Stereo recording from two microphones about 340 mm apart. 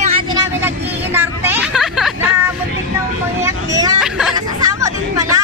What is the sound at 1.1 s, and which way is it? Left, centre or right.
Vehicle, centre.